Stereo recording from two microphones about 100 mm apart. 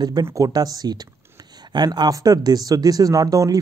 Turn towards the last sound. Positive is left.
turn(degrees=-35)  # may be behind; listen again after turning